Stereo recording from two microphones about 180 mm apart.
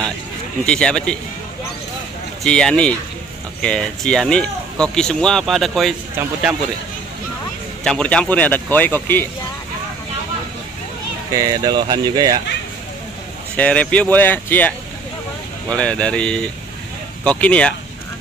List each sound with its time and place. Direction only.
0.7 s speech: 5° left (ahead or behind)
2.4 s speech: 5° left (ahead or behind)
7.8 s speech: 5° left (ahead or behind)
11.3 s speech: 20° right (ahead or behind)
13.6 s speech: 5° left (ahead or behind)
15.7 s speech: 5° left (ahead or behind)